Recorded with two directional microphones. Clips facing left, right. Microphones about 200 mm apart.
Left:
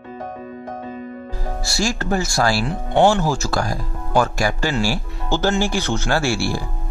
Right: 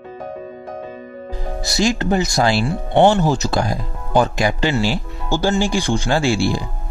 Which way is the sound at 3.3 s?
20° right (ahead or behind).